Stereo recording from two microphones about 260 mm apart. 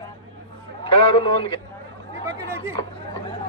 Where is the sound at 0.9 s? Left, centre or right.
Centre.